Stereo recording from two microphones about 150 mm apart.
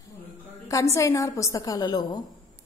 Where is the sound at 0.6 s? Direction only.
20° left (ahead or behind).